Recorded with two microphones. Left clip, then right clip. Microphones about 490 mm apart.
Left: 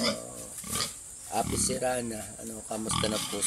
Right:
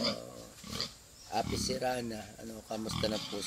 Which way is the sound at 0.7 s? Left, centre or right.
Right.